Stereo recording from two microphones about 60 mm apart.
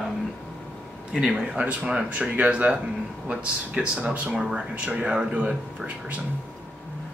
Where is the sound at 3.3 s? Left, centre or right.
Centre.